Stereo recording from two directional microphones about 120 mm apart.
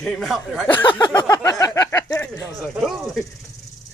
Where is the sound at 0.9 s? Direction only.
40° left (ahead or behind).